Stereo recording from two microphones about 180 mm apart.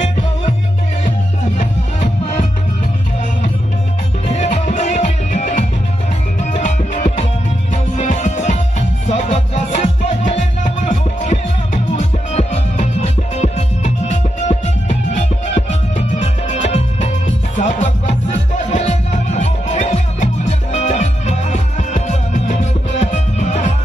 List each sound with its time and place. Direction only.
1.6 s music: 45° left (ahead or behind)
4.3 s music: 40° left (ahead or behind)